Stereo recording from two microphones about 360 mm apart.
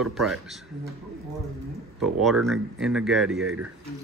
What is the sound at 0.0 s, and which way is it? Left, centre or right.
Speech, centre.